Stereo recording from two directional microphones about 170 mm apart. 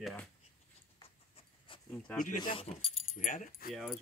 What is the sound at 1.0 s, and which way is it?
Writing, 35° left (ahead or behind).